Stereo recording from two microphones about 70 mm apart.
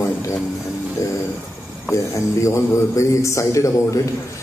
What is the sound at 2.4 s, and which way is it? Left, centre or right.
A man's voice, left.